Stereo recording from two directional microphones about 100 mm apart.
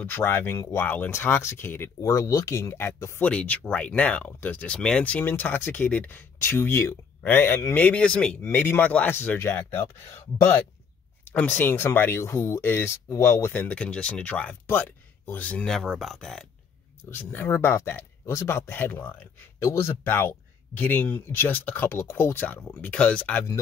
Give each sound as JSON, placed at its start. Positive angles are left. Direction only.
{"t": 0.0, "sound": "speech", "side_deg": 20}
{"t": 2.0, "sound": "speech", "side_deg": 35}
{"t": 3.3, "sound": "speech", "side_deg": 15}
{"t": 8.4, "sound": "speech", "side_deg": 25}
{"t": 11.2, "sound": "speech", "side_deg": 20}
{"t": 13.5, "sound": "speech", "side_deg": 15}
{"t": 17.1, "sound": "speech", "side_deg": 20}